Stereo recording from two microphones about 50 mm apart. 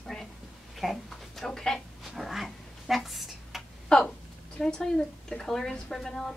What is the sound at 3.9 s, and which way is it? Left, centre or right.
A woman's voice, centre.